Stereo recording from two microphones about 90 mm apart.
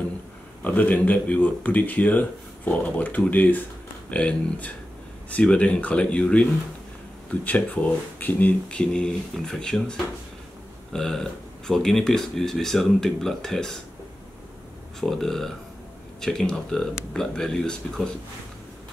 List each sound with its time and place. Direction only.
0.6 s speech: 15° left (ahead or behind)
15.0 s speech: 5° left (ahead or behind)